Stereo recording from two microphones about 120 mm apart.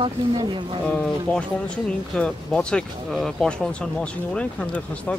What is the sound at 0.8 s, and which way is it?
Speech, 5° left (ahead or behind).